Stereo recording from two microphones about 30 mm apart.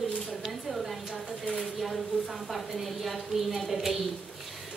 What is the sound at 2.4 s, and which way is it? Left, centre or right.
A woman's voice, centre.